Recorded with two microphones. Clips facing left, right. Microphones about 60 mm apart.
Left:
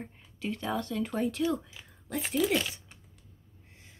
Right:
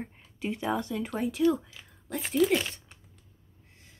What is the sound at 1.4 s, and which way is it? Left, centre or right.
Speech, centre.